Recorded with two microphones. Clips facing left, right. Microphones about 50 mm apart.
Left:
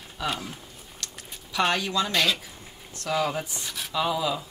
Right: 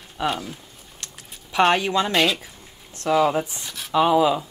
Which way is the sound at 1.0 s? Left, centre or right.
Right.